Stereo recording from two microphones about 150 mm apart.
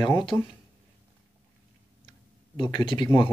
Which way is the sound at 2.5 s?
30° left (ahead or behind).